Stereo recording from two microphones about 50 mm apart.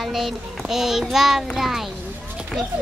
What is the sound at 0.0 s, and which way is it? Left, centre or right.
A child's voice, centre.